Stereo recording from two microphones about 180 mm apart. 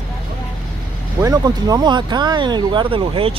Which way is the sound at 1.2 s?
20° right (ahead or behind).